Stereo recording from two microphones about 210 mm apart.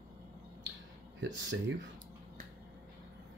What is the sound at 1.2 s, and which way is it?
Speech, 60° right (ahead or behind).